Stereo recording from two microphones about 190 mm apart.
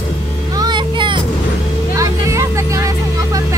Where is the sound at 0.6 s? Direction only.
25° right (ahead or behind).